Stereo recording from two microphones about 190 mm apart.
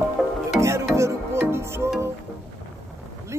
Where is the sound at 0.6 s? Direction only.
15° right (ahead or behind).